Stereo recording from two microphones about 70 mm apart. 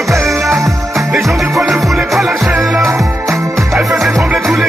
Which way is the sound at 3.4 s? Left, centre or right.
Right.